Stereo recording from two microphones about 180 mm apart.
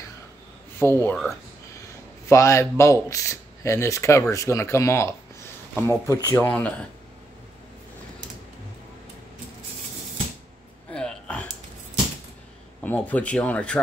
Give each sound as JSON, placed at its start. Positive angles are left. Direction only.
{"t": 0.7, "sound": "speech", "side_deg": 10}
{"t": 2.2, "sound": "speech", "side_deg": 15}
{"t": 10.9, "sound": "a sound", "side_deg": 5}
{"t": 12.8, "sound": "speech", "side_deg": 10}